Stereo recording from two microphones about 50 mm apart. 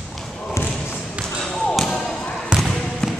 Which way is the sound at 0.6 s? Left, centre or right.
Left.